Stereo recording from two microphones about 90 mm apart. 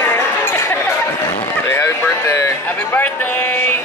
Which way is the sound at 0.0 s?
25° left (ahead or behind).